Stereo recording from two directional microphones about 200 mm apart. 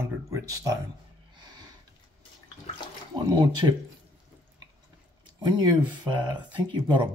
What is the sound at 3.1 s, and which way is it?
Speech, 20° right (ahead or behind).